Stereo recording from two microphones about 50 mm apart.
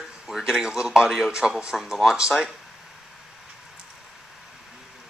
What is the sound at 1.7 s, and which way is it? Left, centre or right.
Speech, centre.